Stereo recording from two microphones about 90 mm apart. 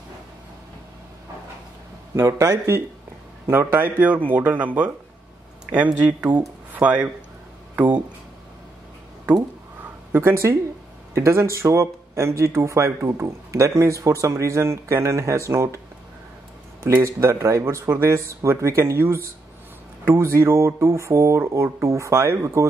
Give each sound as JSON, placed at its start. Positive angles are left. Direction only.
{"t": 2.1, "sound": "speech", "side_deg": -35}
{"t": 6.3, "sound": "speech", "side_deg": -15}
{"t": 10.1, "sound": "speech", "side_deg": -30}
{"t": 16.8, "sound": "speech", "side_deg": -30}